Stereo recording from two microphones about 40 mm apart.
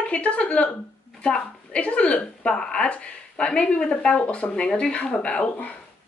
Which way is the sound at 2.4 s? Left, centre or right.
Centre.